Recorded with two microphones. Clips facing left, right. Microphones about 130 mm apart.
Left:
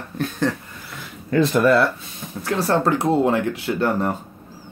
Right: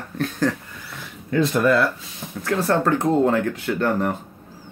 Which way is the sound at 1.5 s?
35° left (ahead or behind).